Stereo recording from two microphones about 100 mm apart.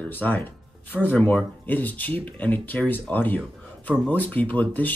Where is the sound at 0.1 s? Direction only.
15° left (ahead or behind).